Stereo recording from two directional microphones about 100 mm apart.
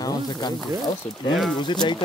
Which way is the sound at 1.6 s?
50° left (ahead or behind).